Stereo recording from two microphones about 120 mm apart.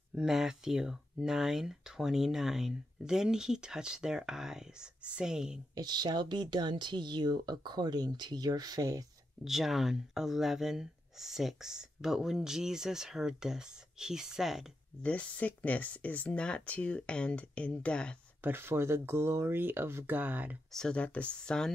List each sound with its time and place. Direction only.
0.1 s speech: 5° right (ahead or behind)
5.8 s speech: 35° right (ahead or behind)
9.4 s speech: centre (ahead or behind)
15.0 s speech: 10° left (ahead or behind)
18.4 s speech: 20° right (ahead or behind)
20.7 s speech: 5° left (ahead or behind)